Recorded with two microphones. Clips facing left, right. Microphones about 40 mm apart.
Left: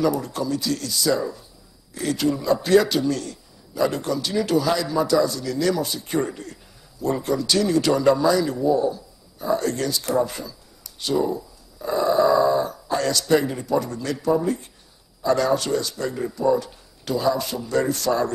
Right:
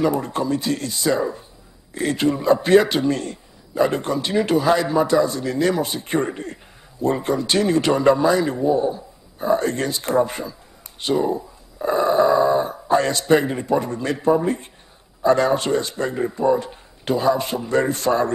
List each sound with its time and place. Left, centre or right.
0.0 s a man's voice: right